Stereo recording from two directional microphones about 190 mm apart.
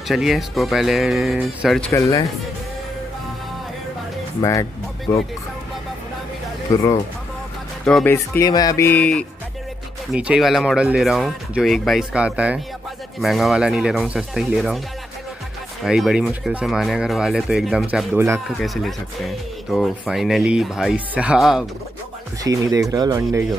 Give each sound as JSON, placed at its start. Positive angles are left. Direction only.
{"t": 0.1, "sound": "speech", "side_deg": 0}
{"t": 1.9, "sound": "speech", "side_deg": 15}
{"t": 4.4, "sound": "speech", "side_deg": 15}
{"t": 6.7, "sound": "speech", "side_deg": 15}
{"t": 10.1, "sound": "speech", "side_deg": -5}
{"t": 15.8, "sound": "speech", "side_deg": 0}
{"t": 22.4, "sound": "speech", "side_deg": -15}